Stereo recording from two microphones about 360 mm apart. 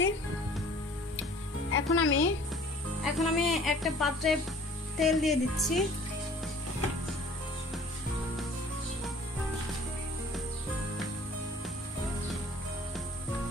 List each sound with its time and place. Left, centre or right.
1.7 s speech: left
3.0 s speech: centre